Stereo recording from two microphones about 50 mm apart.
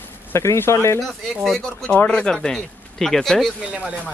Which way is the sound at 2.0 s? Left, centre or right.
Left.